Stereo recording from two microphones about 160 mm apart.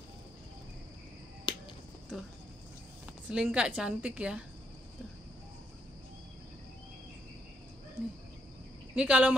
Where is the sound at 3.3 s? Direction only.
5° right (ahead or behind).